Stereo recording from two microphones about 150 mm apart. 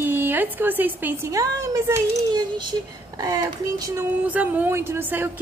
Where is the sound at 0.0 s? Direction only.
15° right (ahead or behind).